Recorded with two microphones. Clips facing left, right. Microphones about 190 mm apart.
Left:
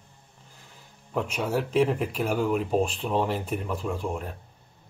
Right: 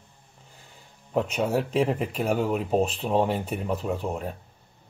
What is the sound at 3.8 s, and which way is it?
Speech, 35° right (ahead or behind).